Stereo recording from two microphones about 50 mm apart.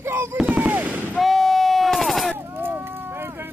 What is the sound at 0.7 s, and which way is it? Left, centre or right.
Vehicle, right.